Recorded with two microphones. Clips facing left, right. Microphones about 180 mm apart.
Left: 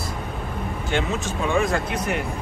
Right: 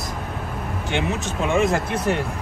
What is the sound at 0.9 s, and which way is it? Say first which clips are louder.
Speech: even; 20° right (ahead or behind).